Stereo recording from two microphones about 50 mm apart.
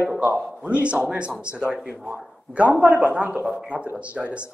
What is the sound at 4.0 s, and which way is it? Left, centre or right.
Speech, right.